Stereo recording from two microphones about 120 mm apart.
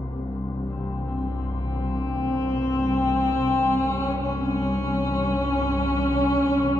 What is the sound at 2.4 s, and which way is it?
Music, 25° left (ahead or behind).